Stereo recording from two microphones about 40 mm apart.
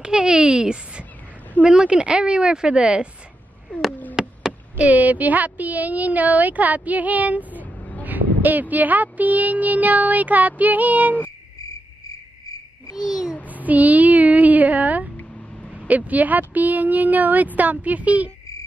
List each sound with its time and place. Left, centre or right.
0.0 s a woman's voice: right
4.1 s a sound: centre
4.7 s speech: right
13.5 s speech: right